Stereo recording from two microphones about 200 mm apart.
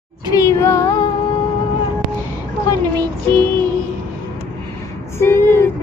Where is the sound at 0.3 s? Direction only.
15° left (ahead or behind).